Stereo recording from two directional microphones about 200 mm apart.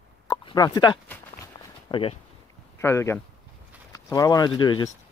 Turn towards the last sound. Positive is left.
turn(degrees=25)  # may be behind; listen again after turning